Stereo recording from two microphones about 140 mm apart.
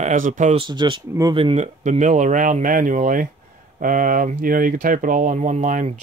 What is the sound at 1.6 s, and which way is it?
Speech, 60° right (ahead or behind).